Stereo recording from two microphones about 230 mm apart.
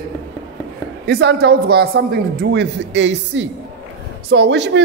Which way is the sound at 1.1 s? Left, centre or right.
Right.